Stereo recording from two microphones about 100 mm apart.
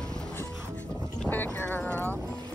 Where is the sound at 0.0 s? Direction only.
5° left (ahead or behind).